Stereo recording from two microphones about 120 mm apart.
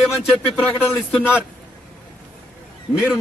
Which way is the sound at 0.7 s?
15° left (ahead or behind).